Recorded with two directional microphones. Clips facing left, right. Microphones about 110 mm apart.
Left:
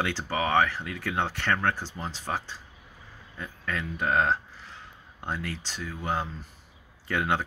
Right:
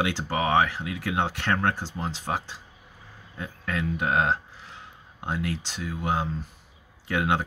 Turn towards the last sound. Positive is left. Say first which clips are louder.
# right 2 dB
turn(degrees=-15)  # may be behind; listen again after turning